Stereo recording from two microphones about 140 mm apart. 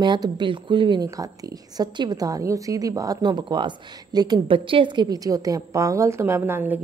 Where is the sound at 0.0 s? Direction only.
35° right (ahead or behind).